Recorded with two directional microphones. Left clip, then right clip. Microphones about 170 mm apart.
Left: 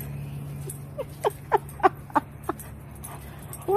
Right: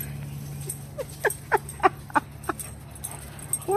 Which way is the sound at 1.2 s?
10° left (ahead or behind).